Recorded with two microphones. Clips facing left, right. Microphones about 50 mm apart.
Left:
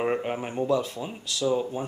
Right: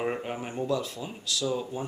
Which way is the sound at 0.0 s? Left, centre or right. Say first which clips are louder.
Left 4 dB; centre.